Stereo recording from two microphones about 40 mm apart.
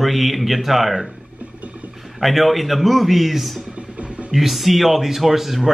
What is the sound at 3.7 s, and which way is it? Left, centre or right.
Music, right.